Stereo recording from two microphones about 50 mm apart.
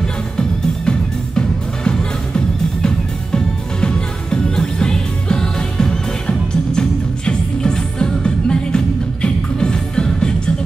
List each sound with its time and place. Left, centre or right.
0.0 s music: centre